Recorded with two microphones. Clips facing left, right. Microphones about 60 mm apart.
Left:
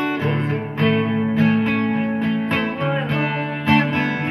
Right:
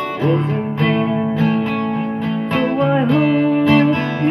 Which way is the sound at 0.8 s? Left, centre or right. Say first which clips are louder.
Right 1 dB; left.